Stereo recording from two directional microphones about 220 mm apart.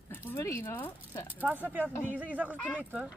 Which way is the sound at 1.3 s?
5° right (ahead or behind).